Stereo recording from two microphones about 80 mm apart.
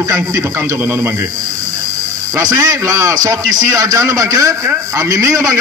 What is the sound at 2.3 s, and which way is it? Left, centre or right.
A man's voice, right.